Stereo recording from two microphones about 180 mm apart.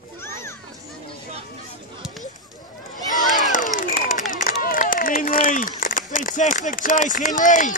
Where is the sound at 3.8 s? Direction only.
45° left (ahead or behind).